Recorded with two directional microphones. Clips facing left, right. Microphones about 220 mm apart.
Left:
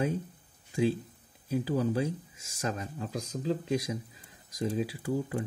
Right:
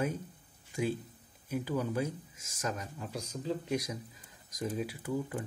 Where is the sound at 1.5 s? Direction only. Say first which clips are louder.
Left 4 dB; 30° left (ahead or behind).